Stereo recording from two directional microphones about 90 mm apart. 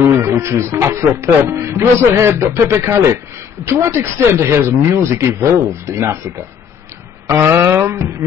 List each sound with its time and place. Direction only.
0.1 s a sound: 30° right (ahead or behind)
0.6 s speech: 30° right (ahead or behind)
7.2 s speech: 30° right (ahead or behind)